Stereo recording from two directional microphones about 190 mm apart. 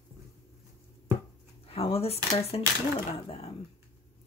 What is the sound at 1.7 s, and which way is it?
Speech, 30° left (ahead or behind).